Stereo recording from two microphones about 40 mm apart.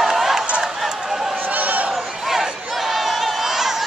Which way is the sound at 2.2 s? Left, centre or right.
Centre.